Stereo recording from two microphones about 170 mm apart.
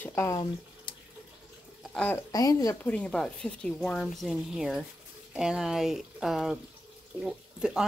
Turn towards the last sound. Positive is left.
turn(degrees=-5)  # may be behind; listen again after turning